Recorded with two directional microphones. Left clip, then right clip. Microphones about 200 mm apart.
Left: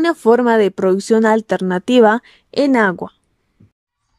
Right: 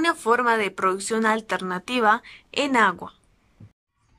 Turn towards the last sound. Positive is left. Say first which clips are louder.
# left 5 dB
turn(degrees=35)  # may be behind; listen again after turning